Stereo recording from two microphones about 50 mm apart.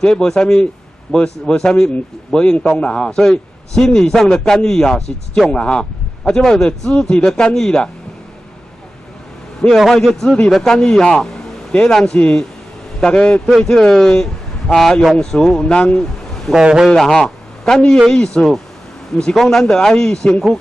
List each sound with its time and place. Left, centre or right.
0.0 s a man's voice: centre
9.8 s a man's voice: centre
12.2 s a man's voice: left
15.6 s speech: left
16.5 s a man's voice: centre
16.9 s a man's voice: centre